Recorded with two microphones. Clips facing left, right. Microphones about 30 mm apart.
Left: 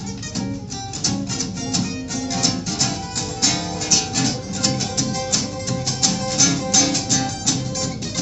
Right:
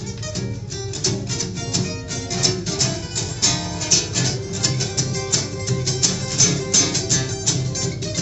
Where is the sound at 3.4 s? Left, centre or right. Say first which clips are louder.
Left 1 dB; left.